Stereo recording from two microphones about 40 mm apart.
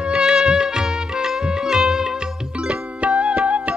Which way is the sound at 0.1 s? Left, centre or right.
Centre.